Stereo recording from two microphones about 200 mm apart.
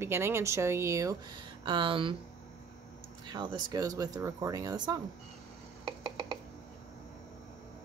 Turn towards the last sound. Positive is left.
turn(degrees=-20)  # may be behind; listen again after turning